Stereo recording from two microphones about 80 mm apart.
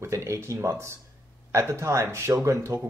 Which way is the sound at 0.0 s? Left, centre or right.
Right.